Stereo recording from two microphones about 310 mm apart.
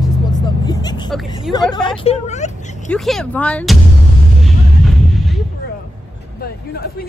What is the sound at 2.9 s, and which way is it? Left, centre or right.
Speech, centre.